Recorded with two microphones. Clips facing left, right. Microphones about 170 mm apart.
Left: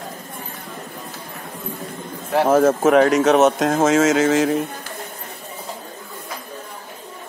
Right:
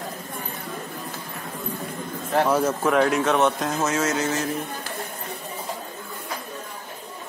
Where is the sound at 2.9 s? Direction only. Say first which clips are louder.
Left 5 dB; 70° left (ahead or behind).